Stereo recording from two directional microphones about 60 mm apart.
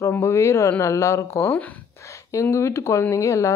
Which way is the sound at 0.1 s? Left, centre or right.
Left.